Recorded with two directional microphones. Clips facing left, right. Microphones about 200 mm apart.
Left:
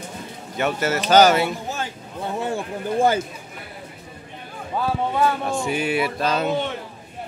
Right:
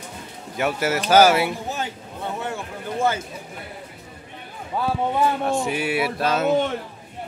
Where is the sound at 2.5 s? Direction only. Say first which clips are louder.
Left 5 dB; 35° left (ahead or behind).